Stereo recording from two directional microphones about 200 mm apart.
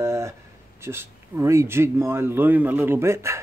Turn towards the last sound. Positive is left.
turn(degrees=-15)  # may be behind; listen again after turning